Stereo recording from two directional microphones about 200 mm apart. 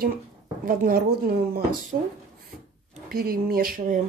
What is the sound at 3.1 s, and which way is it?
Speech, 50° right (ahead or behind).